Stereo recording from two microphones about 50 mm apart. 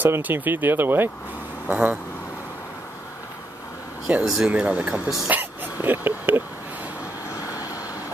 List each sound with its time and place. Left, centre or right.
0.2 s speech: right
1.7 s speech: right
4.2 s speech: centre
4.5 s speech: right
5.3 s speech: right